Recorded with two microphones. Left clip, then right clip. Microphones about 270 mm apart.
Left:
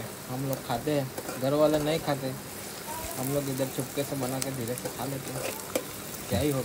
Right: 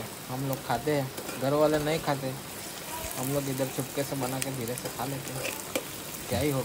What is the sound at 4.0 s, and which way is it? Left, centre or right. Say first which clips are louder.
Speech: even; centre.